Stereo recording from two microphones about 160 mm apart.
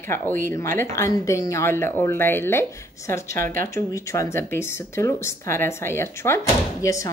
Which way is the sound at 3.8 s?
20° left (ahead or behind).